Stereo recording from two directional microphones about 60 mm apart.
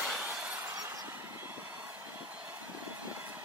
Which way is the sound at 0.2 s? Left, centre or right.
Right.